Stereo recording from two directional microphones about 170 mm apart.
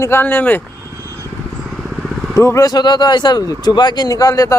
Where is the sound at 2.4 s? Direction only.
20° left (ahead or behind).